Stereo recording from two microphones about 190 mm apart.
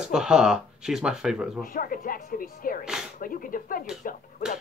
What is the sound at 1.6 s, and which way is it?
Speech, 45° left (ahead or behind).